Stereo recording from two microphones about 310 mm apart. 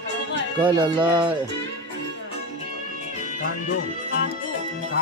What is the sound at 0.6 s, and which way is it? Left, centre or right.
Speech, centre.